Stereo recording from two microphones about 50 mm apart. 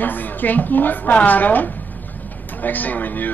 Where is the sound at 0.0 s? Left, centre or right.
Left.